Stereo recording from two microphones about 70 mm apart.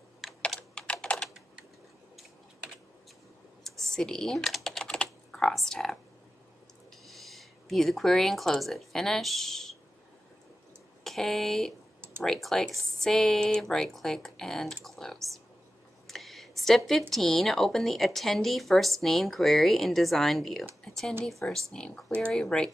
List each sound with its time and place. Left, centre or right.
0.2 s computer keyboard: centre
0.6 s computer keyboard: centre
3.6 s typing: centre
5.5 s a woman's voice: centre
7.1 s speech: centre
11.1 s a woman's voice: centre
16.1 s a sound: centre
17.1 s a woman's voice: centre
20.8 s a sound: centre
21.3 s speech: centre